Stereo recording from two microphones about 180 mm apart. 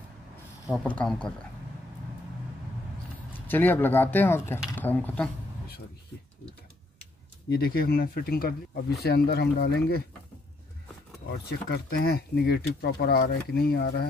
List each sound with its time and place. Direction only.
0.8 s speech: 5° left (ahead or behind)
3.3 s speech: 10° left (ahead or behind)
7.4 s speech: 60° left (ahead or behind)
11.3 s speech: 65° left (ahead or behind)